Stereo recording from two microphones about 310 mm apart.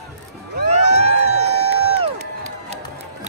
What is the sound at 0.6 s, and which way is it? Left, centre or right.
Crowd, right.